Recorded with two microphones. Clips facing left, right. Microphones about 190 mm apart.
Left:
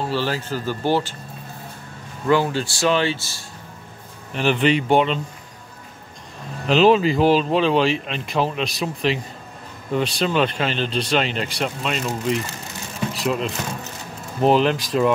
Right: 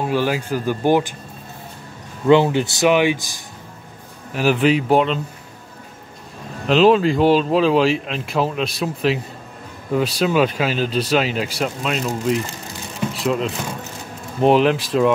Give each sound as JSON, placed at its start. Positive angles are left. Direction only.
{"t": 0.0, "sound": "speech", "side_deg": -15}
{"t": 2.2, "sound": "speech", "side_deg": -20}
{"t": 4.3, "sound": "speech", "side_deg": -5}
{"t": 6.7, "sound": "speech", "side_deg": 0}
{"t": 13.1, "sound": "speech", "side_deg": 0}